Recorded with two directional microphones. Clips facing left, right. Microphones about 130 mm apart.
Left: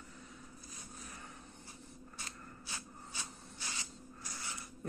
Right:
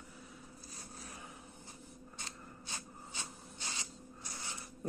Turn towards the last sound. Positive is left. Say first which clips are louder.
# even
turn(degrees=-25)  # may be behind; listen again after turning